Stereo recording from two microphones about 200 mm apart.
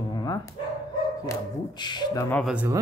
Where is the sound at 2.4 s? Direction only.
5° right (ahead or behind).